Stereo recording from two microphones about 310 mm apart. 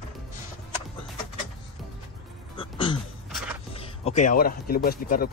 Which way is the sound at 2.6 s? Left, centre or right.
Centre.